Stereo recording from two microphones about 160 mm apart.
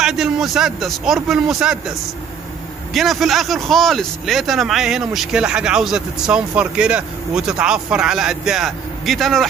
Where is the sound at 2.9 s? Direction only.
Centre (ahead or behind).